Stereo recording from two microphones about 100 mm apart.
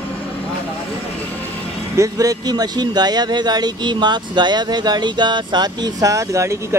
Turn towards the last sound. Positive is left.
turn(degrees=-30)  # may be behind; listen again after turning